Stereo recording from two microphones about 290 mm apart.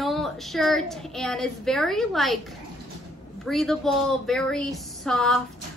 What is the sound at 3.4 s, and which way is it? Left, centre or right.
A woman's voice, centre.